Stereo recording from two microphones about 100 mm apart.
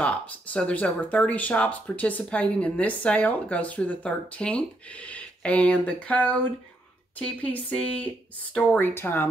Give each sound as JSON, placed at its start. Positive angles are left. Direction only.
{"t": 0.0, "sound": "speech", "side_deg": 10}